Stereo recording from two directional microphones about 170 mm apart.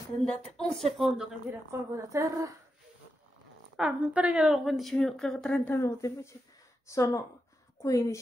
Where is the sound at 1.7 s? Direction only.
20° right (ahead or behind).